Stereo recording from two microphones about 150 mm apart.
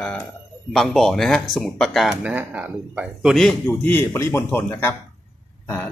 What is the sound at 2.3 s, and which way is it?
Speech, 10° right (ahead or behind).